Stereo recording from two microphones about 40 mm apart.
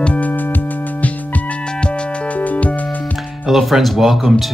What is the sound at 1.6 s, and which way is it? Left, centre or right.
Music, left.